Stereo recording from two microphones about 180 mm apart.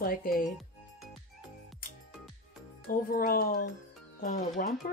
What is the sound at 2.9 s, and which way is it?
A woman's voice, 55° left (ahead or behind).